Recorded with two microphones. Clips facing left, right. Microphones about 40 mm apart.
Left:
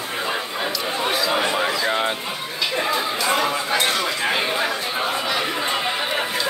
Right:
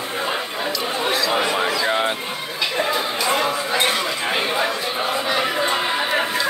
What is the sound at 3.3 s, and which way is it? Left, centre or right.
Chatter, centre.